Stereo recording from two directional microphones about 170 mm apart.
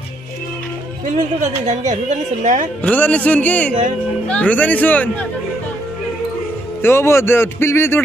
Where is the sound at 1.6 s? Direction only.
45° right (ahead or behind).